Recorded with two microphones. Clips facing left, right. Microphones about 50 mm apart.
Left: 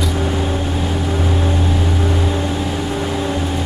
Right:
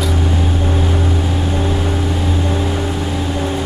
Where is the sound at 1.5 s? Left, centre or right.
Centre.